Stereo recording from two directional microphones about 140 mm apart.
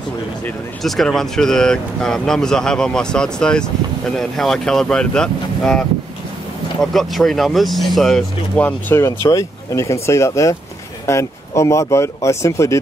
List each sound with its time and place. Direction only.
0.8 s speech: centre (ahead or behind); by 12.7 s 20° left (ahead or behind)